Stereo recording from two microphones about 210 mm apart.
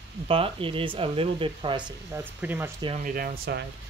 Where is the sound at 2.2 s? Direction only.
10° right (ahead or behind).